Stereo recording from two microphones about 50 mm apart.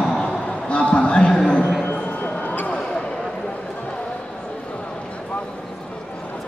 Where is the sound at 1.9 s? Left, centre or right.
Left.